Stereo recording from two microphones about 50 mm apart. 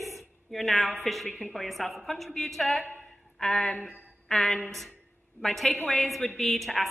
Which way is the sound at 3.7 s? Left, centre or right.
Left.